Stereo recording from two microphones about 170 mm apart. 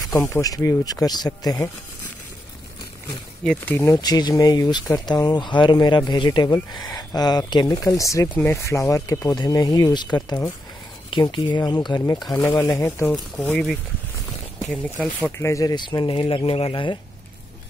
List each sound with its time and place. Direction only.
0.1 s speech: 20° left (ahead or behind)
3.4 s speech: 10° left (ahead or behind)
3.9 s speech: 25° left (ahead or behind)
12.2 s speech: centre (ahead or behind)
12.4 s speech: 15° left (ahead or behind)
15.3 s speech: 15° left (ahead or behind)